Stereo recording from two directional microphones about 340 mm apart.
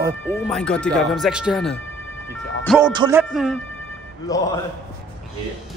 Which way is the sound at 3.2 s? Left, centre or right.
Centre.